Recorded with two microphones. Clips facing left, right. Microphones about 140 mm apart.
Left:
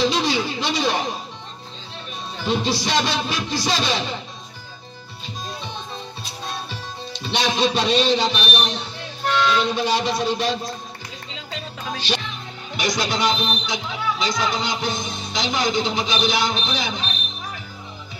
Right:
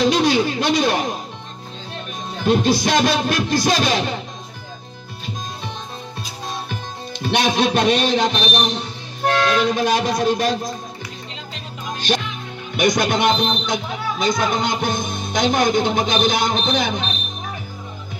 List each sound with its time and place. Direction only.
0.0 s speech: 55° right (ahead or behind)
2.4 s music: 55° right (ahead or behind)
6.7 s speech: 55° right (ahead or behind)
12.7 s speech: 50° right (ahead or behind)